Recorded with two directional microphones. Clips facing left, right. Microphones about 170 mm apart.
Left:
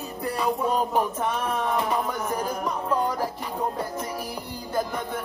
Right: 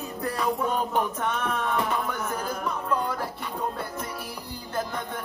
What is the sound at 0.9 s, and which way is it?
Music, 5° left (ahead or behind).